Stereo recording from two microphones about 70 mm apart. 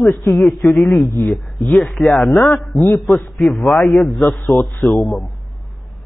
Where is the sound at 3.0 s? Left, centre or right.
Left.